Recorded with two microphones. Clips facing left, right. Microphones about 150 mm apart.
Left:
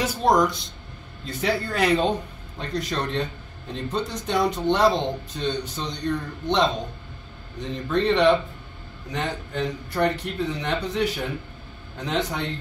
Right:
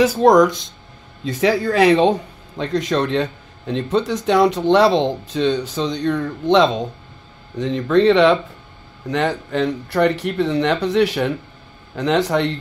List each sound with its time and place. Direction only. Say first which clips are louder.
0.0 s a man's voice: right 8 dB; 90° right